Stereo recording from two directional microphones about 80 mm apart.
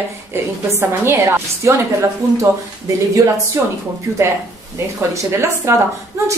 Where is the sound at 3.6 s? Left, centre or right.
Right.